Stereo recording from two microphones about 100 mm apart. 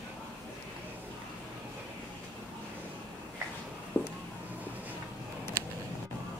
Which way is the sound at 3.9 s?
20° left (ahead or behind).